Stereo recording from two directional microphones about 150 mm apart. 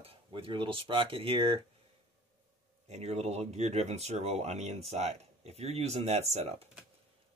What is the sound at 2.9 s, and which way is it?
Speech, 45° right (ahead or behind).